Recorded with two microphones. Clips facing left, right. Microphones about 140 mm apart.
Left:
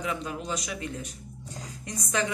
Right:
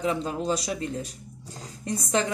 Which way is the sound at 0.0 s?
30° right (ahead or behind).